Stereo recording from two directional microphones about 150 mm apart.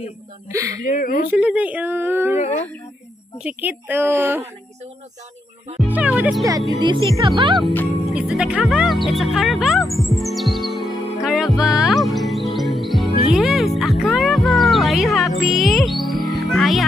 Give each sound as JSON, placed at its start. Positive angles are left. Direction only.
{"t": 0.5, "sound": "speech", "side_deg": -20}
{"t": 0.8, "sound": "speech", "side_deg": 70}
{"t": 1.3, "sound": "a woman's voice", "side_deg": -10}
{"t": 2.4, "sound": "a sound", "side_deg": 45}
{"t": 3.3, "sound": "a woman's voice", "side_deg": -10}
{"t": 5.8, "sound": "a woman's voice", "side_deg": -10}
{"t": 6.8, "sound": "speech", "side_deg": -30}
{"t": 8.1, "sound": "speech", "side_deg": -5}
{"t": 11.2, "sound": "music", "side_deg": 0}
{"t": 13.3, "sound": "speech", "side_deg": 0}